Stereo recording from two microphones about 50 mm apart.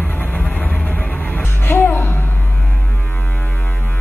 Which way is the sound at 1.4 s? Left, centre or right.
Left.